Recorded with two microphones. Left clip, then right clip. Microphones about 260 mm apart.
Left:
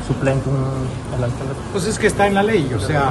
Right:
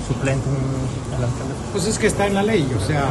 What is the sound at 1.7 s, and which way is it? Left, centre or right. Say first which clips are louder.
Speech: left 3 dB; centre.